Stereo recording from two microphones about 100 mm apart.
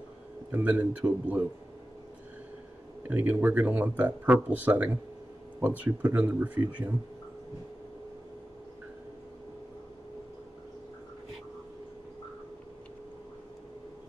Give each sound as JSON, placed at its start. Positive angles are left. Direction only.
{"t": 0.5, "sound": "speech", "side_deg": -15}
{"t": 3.1, "sound": "speech", "side_deg": -20}